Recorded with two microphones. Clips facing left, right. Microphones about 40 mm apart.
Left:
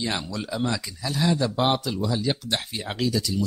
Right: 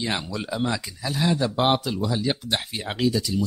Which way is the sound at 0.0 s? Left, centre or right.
Centre.